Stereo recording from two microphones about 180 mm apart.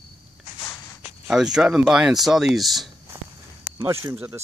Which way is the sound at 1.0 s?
5° right (ahead or behind).